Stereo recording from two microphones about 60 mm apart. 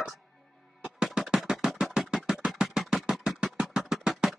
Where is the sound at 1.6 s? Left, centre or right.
Centre.